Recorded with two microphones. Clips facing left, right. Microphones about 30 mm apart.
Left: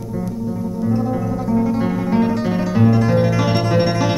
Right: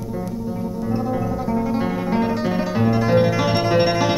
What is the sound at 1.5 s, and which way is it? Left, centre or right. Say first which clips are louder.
Guitar: left 4 dB; centre.